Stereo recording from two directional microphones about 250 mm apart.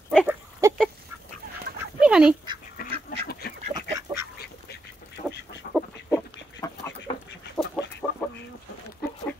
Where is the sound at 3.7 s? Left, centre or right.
Centre.